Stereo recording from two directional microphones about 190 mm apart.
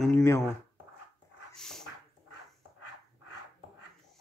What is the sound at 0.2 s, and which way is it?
Speech, 15° left (ahead or behind).